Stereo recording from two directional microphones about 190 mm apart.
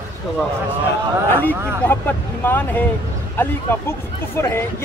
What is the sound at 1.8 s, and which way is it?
Speech, 10° left (ahead or behind).